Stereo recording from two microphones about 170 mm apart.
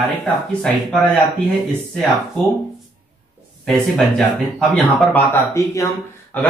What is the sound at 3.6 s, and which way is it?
Speech, centre (ahead or behind).